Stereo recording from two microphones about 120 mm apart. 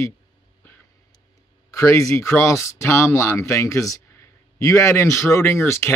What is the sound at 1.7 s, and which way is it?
Speech, 25° left (ahead or behind).